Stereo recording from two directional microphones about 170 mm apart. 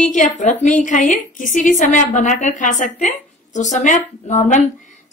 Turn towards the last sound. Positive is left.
turn(degrees=45)  # may be behind; listen again after turning